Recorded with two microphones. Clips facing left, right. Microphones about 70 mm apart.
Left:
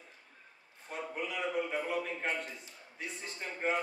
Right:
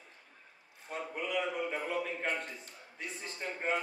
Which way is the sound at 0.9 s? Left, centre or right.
Centre.